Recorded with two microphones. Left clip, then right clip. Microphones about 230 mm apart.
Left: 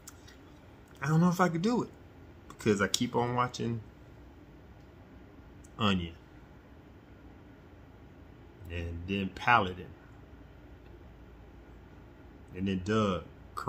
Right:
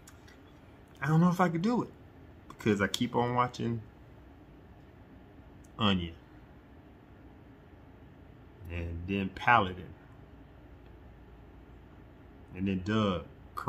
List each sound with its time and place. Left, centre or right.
0.9 s speech: centre
5.8 s speech: centre
8.6 s a man's voice: centre
12.5 s speech: centre